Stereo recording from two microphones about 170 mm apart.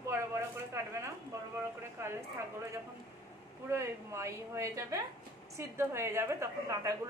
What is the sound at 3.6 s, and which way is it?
A woman's voice, 15° right (ahead or behind).